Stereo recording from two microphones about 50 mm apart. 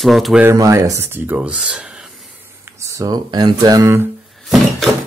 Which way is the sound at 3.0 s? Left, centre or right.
Right.